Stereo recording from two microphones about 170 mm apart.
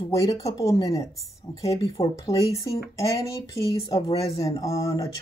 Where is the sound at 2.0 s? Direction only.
35° left (ahead or behind).